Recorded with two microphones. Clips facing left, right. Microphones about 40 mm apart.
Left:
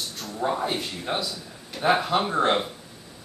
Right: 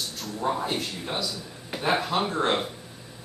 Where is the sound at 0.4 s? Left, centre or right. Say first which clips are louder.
Left 1 dB; centre.